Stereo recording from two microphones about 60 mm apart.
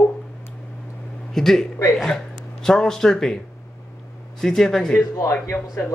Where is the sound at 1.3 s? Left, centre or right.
Centre.